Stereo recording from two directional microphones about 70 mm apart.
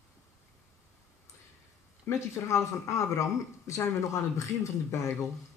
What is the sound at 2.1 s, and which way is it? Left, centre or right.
Speech, left.